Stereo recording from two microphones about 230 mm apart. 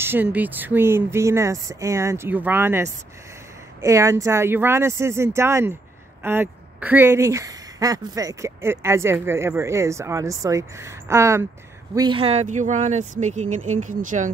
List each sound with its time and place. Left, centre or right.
0.0 s a woman's voice: centre; by 14.3 s right